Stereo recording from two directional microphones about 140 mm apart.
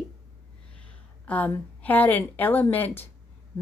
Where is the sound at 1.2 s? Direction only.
10° left (ahead or behind).